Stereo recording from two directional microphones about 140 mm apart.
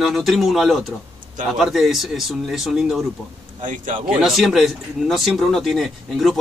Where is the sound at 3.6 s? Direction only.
70° right (ahead or behind).